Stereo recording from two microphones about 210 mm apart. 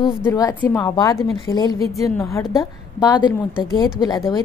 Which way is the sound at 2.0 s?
15° left (ahead or behind).